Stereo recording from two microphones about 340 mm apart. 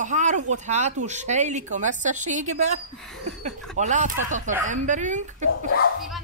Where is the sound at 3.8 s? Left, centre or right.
Right.